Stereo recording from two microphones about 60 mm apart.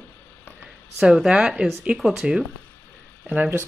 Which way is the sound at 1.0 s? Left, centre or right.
Centre.